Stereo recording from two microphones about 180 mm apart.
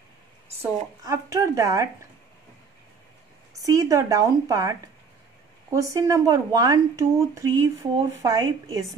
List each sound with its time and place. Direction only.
0.6 s a woman's voice: 15° right (ahead or behind)
3.6 s speech: 20° right (ahead or behind)